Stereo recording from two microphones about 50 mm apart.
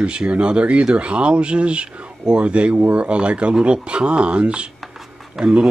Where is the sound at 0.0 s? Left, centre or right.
Right.